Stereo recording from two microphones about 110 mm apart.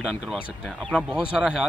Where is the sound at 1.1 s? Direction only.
5° right (ahead or behind).